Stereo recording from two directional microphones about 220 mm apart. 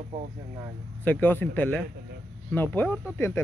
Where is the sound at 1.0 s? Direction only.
10° left (ahead or behind).